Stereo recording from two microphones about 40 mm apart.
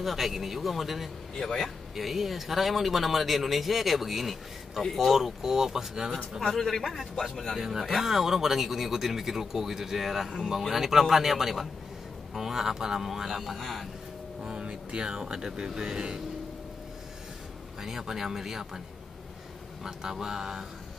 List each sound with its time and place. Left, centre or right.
0.0 s a man's voice: centre
1.3 s speech: centre
2.0 s a man's voice: centre
6.4 s a man's voice: centre
7.5 s a man's voice: centre
13.6 s a man's voice: centre
14.4 s speech: right
17.8 s speech: centre
19.8 s speech: centre